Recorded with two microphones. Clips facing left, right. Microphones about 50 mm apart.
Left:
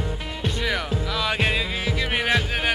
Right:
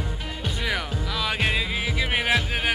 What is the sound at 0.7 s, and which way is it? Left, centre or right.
Music, centre.